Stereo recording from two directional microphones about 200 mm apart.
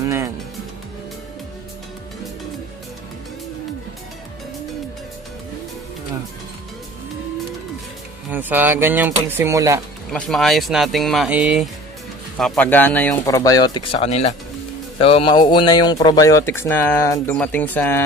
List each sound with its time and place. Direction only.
0.0 s music: 15° right (ahead or behind)
8.3 s speech: 10° right (ahead or behind)
10.1 s speech: centre (ahead or behind)